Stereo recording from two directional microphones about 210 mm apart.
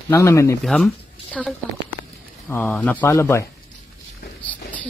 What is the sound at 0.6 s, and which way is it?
Speech, centre (ahead or behind).